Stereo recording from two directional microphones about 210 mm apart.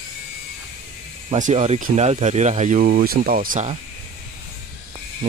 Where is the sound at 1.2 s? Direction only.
35° right (ahead or behind).